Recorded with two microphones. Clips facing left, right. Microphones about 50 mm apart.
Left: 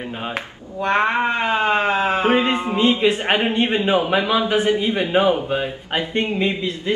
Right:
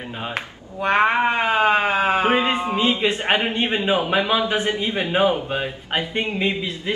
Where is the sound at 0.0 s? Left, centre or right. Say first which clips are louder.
Left 2 dB; centre.